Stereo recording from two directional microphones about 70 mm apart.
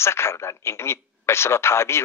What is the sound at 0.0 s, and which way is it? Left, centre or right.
A man's voice, left.